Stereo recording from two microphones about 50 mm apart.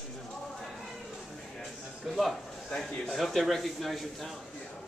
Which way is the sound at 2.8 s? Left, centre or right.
Centre.